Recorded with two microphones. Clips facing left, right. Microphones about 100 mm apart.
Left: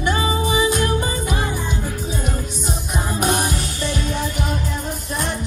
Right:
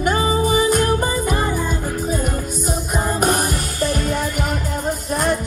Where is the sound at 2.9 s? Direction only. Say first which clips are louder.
Right 2 dB; 45° right (ahead or behind).